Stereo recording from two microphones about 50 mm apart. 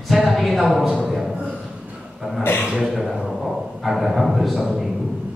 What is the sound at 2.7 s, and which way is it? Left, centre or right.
A man's voice, centre.